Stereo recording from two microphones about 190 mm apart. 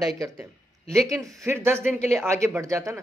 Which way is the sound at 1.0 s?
15° right (ahead or behind).